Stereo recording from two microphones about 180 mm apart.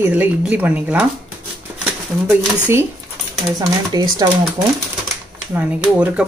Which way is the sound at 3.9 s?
20° right (ahead or behind).